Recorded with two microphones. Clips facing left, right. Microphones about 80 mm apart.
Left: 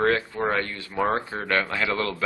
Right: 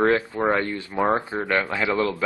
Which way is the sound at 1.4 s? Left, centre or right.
Centre.